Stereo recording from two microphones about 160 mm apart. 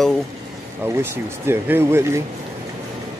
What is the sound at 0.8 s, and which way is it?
Speech, 15° right (ahead or behind).